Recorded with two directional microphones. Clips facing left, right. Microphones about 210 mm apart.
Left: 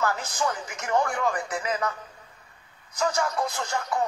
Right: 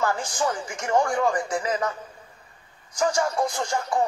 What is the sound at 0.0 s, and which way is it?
Speech, 15° right (ahead or behind).